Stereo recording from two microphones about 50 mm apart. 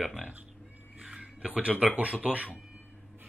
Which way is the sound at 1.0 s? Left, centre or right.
Centre.